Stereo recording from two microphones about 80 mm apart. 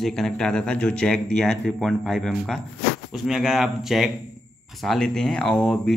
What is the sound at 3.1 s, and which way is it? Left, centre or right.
Speech, centre.